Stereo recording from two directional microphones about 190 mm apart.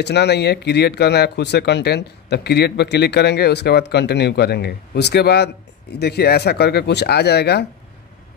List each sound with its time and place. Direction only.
0.0 s speech: 60° left (ahead or behind)